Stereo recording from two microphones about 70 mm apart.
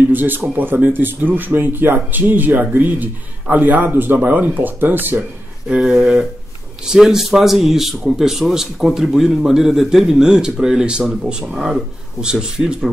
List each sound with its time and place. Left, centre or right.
0.1 s speech: right
5.8 s a sound: centre
6.9 s speech: centre